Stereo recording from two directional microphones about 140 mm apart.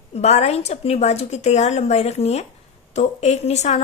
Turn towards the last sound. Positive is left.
turn(degrees=55)  # may be behind; listen again after turning